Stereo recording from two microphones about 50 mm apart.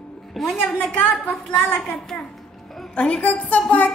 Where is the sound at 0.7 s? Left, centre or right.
Left.